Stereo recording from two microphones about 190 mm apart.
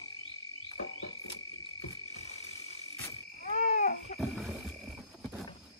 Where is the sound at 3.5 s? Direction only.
40° left (ahead or behind).